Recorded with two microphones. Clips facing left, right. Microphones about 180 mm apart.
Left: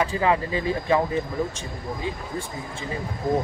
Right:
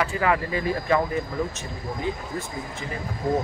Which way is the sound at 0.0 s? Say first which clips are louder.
Left 1 dB; 25° left (ahead or behind).